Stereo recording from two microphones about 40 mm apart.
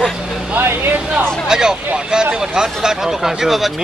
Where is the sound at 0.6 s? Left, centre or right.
Right.